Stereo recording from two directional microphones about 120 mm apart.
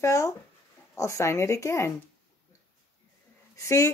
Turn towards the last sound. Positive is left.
turn(degrees=25)  # may be behind; listen again after turning